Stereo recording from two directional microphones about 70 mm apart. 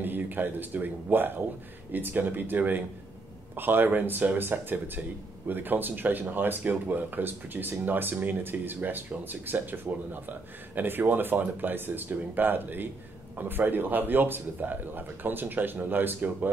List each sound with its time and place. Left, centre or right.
0.0 s speech: right